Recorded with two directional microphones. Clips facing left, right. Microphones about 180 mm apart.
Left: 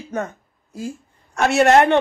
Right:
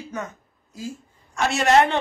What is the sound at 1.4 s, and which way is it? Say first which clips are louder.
Speech: left 4 dB; 60° left (ahead or behind).